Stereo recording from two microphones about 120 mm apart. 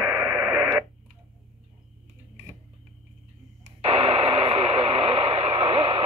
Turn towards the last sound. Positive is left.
turn(degrees=-50)  # may be behind; listen again after turning